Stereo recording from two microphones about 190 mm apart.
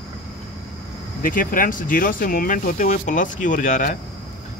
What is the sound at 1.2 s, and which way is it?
Speech, 45° left (ahead or behind).